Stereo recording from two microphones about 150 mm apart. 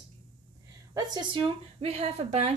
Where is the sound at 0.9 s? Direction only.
30° right (ahead or behind); by 2.5 s 45° right (ahead or behind).